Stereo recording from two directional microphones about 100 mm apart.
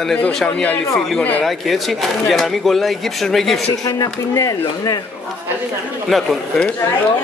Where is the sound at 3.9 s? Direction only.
35° left (ahead or behind).